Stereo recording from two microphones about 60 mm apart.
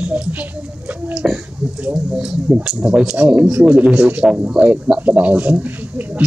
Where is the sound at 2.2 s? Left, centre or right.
Centre.